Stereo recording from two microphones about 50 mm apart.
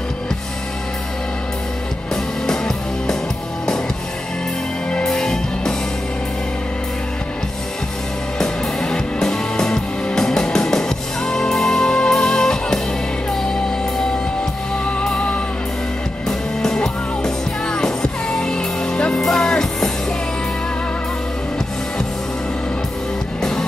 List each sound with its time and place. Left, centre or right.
2.4 s music: centre
5.0 s music: centre
8.4 s music: centre
15.1 s music: left
16.3 s music: centre